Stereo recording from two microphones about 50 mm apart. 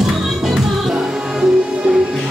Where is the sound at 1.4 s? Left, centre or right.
Centre.